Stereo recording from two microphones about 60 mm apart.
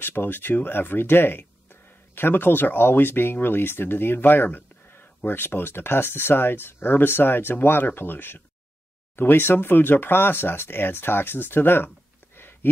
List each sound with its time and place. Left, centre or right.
0.0 s speech: left